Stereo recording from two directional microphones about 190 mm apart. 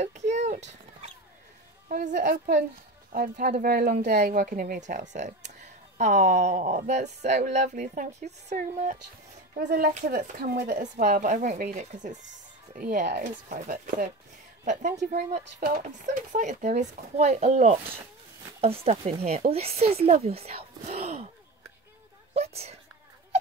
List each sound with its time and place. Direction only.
0.0 s a sound: 35° right (ahead or behind)
1.9 s speech: 40° right (ahead or behind)
3.9 s speech: 40° right (ahead or behind)
9.6 s speech: 60° right (ahead or behind)
13.0 s speech: 60° right (ahead or behind)
13.5 s speech: 45° right (ahead or behind)
22.3 s speech: 35° right (ahead or behind)